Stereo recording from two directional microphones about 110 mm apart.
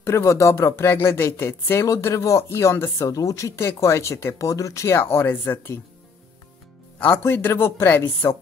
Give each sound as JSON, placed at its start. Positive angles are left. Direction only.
{"t": 0.0, "sound": "speech", "side_deg": 25}
{"t": 7.0, "sound": "speech", "side_deg": 15}